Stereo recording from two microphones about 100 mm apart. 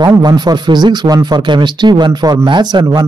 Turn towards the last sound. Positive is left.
turn(degrees=-45)  # may be behind; listen again after turning